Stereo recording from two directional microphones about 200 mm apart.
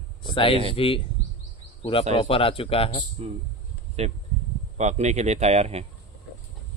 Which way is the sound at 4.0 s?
30° right (ahead or behind).